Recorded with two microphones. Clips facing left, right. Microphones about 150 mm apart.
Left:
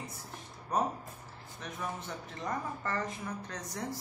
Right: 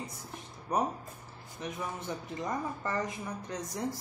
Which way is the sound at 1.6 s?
15° right (ahead or behind).